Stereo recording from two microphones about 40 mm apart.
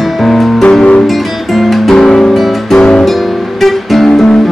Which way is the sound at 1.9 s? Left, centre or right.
Centre.